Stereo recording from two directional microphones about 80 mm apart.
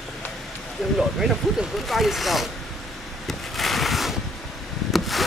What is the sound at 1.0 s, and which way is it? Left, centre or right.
Speech, centre.